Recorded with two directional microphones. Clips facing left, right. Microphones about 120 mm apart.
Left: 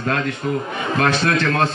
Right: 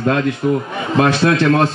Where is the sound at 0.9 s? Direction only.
25° right (ahead or behind).